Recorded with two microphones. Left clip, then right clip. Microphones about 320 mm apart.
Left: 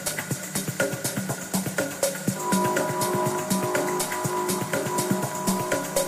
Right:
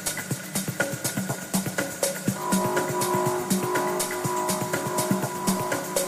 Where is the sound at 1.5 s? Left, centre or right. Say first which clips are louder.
Left 2 dB; centre.